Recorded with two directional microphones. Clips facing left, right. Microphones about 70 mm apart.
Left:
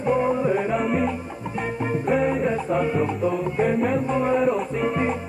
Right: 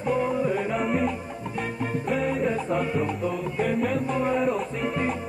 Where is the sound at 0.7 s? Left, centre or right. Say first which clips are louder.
Left 2 dB; centre.